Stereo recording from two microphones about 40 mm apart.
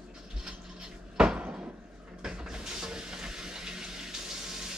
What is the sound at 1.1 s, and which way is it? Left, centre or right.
Cupboard open or close, right.